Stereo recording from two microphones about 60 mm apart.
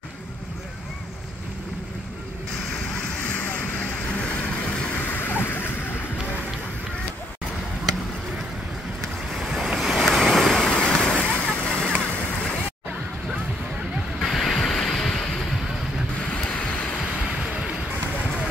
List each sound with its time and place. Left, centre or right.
5.0 s a sound: left
9.4 s waves: centre
10.7 s vehicle: centre
11.4 s splash: centre
14.2 s vehicle: centre
14.7 s waves: centre
16.4 s vehicle: centre